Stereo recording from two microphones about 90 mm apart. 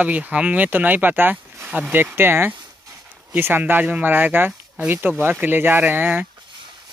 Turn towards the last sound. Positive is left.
turn(degrees=-20)  # may be behind; listen again after turning